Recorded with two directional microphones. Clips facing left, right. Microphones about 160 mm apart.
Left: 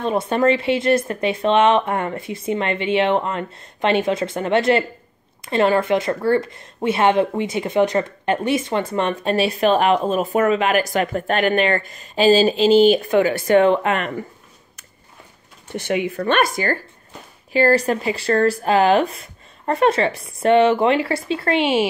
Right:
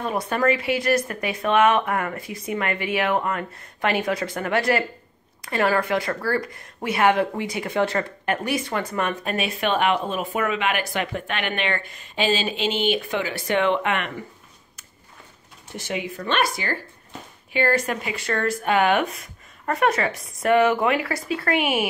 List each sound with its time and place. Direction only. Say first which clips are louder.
0.0 s speech: left 5 dB; 25° left (ahead or behind)
15.7 s speech: left 7 dB; 60° left (ahead or behind)
17.5 s speech: left 6 dB; 35° left (ahead or behind)